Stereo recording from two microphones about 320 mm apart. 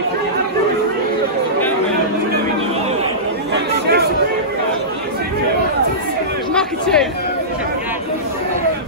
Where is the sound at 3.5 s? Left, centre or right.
Right.